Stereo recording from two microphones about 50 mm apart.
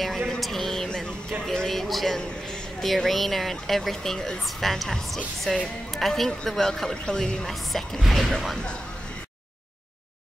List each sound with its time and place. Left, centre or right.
0.4 s a sound: centre
0.8 s music: centre
1.4 s speech: centre
1.7 s a sound: centre
2.8 s speech: centre
7.4 s speech: centre